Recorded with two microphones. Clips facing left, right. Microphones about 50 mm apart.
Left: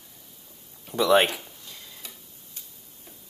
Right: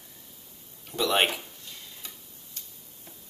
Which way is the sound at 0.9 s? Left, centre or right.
Left.